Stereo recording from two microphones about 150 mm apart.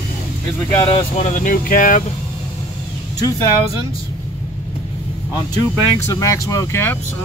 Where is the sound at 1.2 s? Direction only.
60° left (ahead or behind).